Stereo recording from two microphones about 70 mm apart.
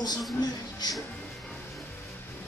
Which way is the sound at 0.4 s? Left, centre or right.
Left.